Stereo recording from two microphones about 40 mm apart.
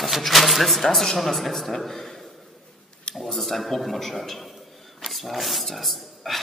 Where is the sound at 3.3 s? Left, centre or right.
Centre.